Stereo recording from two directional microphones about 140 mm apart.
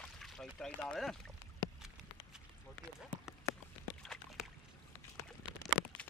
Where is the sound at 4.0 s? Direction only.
Centre (ahead or behind).